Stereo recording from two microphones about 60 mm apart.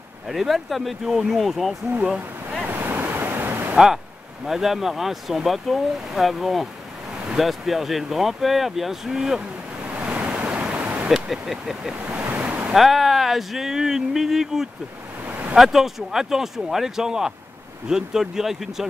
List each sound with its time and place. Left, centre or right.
0.3 s speech: centre
2.7 s waves: right
3.7 s speech: centre
9.8 s waves: right
10.4 s pink noise: centre
11.1 s speech: centre
12.0 s waves: right
12.7 s speech: centre
15.2 s a sound: right
15.5 s speech: centre